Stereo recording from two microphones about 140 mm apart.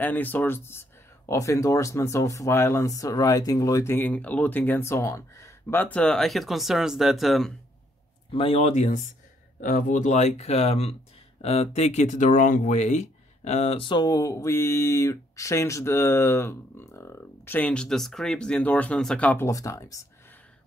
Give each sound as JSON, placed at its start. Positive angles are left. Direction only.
{"t": 0.0, "sound": "speech", "side_deg": 10}
{"t": 8.3, "sound": "speech", "side_deg": 40}
{"t": 9.6, "sound": "speech", "side_deg": 70}
{"t": 19.4, "sound": "speech", "side_deg": 20}